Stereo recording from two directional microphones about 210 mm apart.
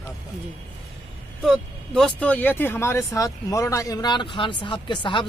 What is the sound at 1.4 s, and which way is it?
Speech, centre (ahead or behind).